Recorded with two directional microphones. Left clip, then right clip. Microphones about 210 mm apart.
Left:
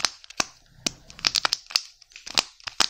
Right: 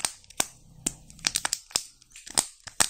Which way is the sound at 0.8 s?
20° left (ahead or behind).